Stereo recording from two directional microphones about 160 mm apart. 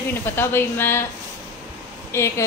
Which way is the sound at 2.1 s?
15° left (ahead or behind).